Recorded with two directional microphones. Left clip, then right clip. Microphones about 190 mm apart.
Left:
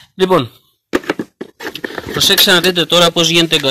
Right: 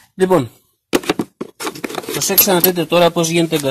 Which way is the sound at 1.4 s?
55° right (ahead or behind).